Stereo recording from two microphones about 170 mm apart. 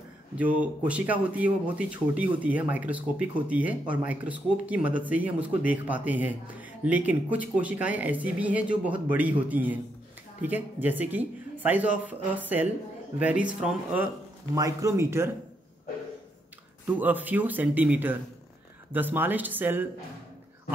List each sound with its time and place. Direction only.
0.4 s speech: 10° right (ahead or behind)
14.5 s speech: 20° right (ahead or behind)
16.8 s speech: 10° right (ahead or behind)